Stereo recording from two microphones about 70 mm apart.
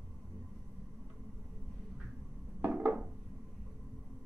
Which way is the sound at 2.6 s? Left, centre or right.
Right.